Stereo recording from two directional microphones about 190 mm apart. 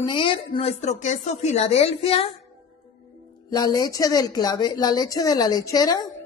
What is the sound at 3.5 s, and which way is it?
Speech, 20° left (ahead or behind).